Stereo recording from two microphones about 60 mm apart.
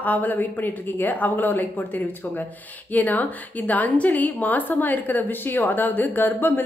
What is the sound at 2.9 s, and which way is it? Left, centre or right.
A woman's voice, left.